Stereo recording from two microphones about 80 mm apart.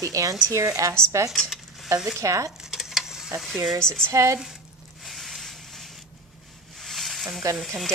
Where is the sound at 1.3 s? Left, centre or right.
Centre.